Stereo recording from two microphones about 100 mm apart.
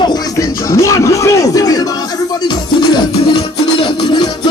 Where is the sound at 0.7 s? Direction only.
30° left (ahead or behind).